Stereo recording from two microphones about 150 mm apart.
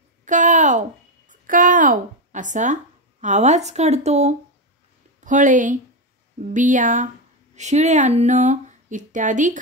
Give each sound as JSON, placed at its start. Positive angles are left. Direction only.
{"t": 0.2, "sound": "a sound", "side_deg": -55}
{"t": 1.3, "sound": "speech", "side_deg": -60}
{"t": 5.2, "sound": "speech", "side_deg": -60}